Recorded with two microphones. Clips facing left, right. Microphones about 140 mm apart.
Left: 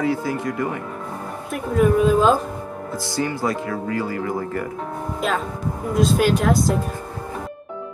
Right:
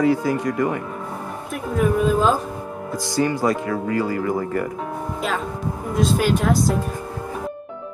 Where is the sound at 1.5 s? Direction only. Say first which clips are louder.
Left 3 dB; centre (ahead or behind).